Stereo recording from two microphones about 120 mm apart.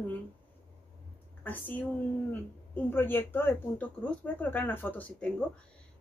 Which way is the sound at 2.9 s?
15° left (ahead or behind).